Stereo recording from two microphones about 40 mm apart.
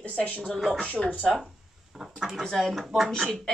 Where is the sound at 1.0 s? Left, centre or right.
Centre.